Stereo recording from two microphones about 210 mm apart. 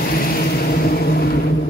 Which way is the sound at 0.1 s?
45° left (ahead or behind).